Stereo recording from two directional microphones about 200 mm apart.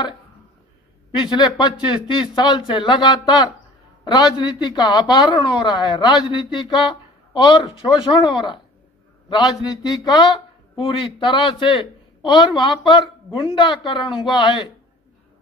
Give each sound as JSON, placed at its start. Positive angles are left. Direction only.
{"t": 1.3, "sound": "a man's voice", "side_deg": 20}
{"t": 9.3, "sound": "a man's voice", "side_deg": 20}